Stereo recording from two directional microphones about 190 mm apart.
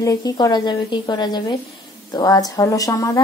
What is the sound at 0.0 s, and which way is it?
A woman's voice, 15° left (ahead or behind).